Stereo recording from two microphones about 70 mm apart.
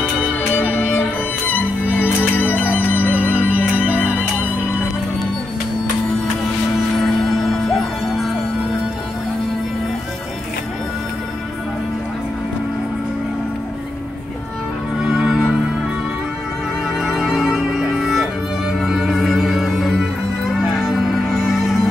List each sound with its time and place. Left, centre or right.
0.3 s music: left
3.3 s music: right
7.0 s music: centre
15.0 s music: centre
17.0 s music: centre